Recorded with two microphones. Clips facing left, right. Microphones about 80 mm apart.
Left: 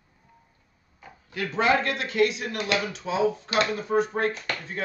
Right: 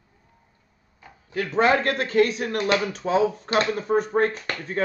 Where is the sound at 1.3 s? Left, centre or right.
Right.